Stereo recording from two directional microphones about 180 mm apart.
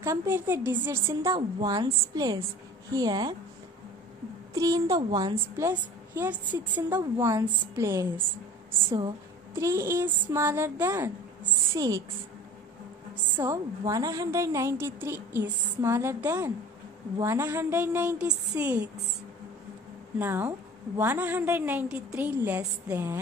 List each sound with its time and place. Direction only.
0.0 s a woman's voice: 15° right (ahead or behind)
4.6 s a woman's voice: 20° right (ahead or behind)
5.7 s a woman's voice: 10° right (ahead or behind)
9.6 s a woman's voice: 15° right (ahead or behind)
13.4 s a woman's voice: 15° right (ahead or behind)
20.2 s a woman's voice: 10° right (ahead or behind)